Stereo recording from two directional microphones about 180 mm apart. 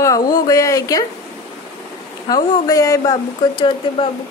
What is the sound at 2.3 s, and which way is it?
Speech, 20° left (ahead or behind).